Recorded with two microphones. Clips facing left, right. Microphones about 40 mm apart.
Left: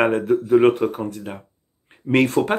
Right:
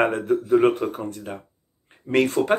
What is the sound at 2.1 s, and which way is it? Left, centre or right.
Speech, left.